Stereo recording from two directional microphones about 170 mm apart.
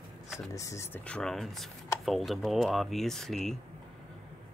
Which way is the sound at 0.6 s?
15° left (ahead or behind).